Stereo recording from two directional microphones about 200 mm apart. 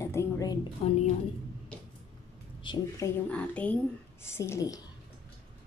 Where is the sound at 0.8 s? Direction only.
30° left (ahead or behind).